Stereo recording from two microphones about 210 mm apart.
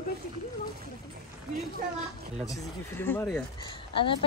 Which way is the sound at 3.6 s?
25° left (ahead or behind).